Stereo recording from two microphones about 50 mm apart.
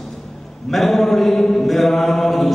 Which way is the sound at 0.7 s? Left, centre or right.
Centre.